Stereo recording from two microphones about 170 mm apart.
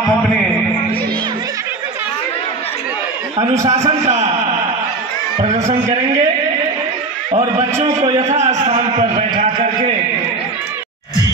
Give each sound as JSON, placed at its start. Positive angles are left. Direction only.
{"t": 3.7, "sound": "a man's voice", "side_deg": -40}
{"t": 5.4, "sound": "a man's voice", "side_deg": -40}
{"t": 7.9, "sound": "a man's voice", "side_deg": -20}
{"t": 8.2, "sound": "a sound", "side_deg": -40}